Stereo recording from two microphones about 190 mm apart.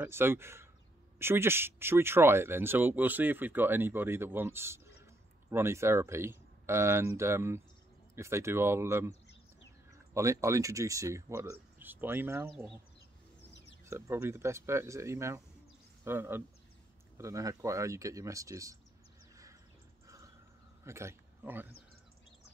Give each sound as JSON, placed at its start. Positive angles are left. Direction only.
{"t": 0.0, "sound": "speech", "side_deg": -10}
{"t": 10.1, "sound": "speech", "side_deg": -15}
{"t": 13.8, "sound": "speech", "side_deg": -15}
{"t": 20.8, "sound": "speech", "side_deg": -15}